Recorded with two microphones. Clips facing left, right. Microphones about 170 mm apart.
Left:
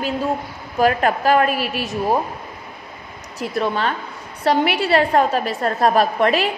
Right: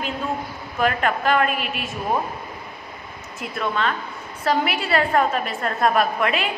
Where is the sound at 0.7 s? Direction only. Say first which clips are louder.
Left 4 dB; 40° left (ahead or behind).